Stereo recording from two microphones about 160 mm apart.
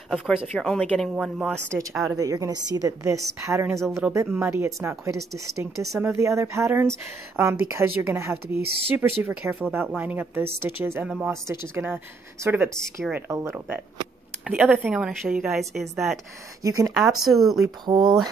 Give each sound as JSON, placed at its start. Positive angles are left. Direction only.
{"t": 0.1, "sound": "a woman's voice", "side_deg": -5}
{"t": 2.1, "sound": "a woman's voice", "side_deg": -20}
{"t": 16.6, "sound": "a woman's voice", "side_deg": -20}
{"t": 16.9, "sound": "a woman's voice", "side_deg": 0}
{"t": 17.6, "sound": "a woman's voice", "side_deg": -25}